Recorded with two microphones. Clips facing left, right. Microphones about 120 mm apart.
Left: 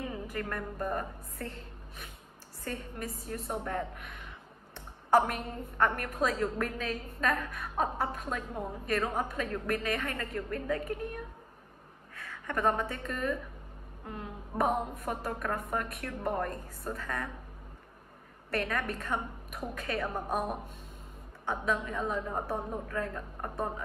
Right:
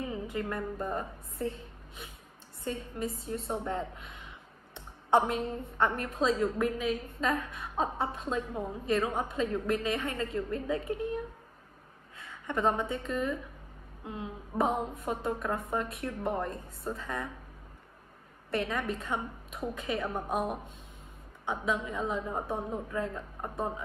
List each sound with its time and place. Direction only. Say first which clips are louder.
0.1 s a woman's voice: right 2 dB; 20° right (ahead or behind)
4.7 s a sound: left 1 dB; 25° right (ahead or behind)
5.7 s a woman's voice: left 2 dB; 25° right (ahead or behind)
12.2 s a woman's voice: right 1 dB; 20° right (ahead or behind)
18.5 s a woman's voice: right 1 dB; 20° right (ahead or behind)